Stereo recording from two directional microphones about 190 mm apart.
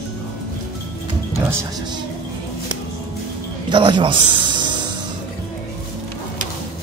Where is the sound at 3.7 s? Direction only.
25° right (ahead or behind).